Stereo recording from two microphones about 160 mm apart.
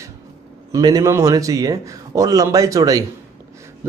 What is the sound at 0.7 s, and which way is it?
A man's voice, 25° right (ahead or behind).